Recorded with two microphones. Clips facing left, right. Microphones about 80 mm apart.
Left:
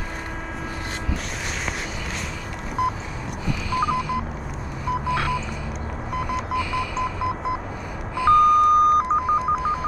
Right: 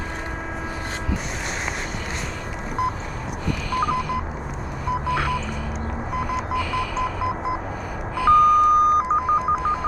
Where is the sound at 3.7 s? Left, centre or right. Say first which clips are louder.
Even; right.